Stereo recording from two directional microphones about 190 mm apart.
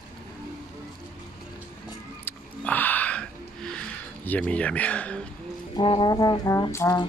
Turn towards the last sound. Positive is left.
turn(degrees=15)  # may be behind; listen again after turning